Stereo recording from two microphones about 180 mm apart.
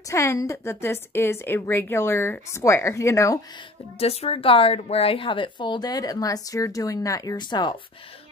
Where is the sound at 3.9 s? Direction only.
35° left (ahead or behind).